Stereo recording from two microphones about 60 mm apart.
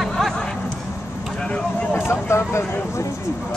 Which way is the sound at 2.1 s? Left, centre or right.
Left.